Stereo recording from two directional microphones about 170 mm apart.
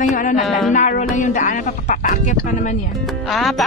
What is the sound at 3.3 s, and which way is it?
Speech, centre (ahead or behind).